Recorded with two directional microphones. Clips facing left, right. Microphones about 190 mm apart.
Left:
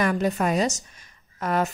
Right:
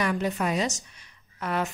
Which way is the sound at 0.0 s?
45° left (ahead or behind).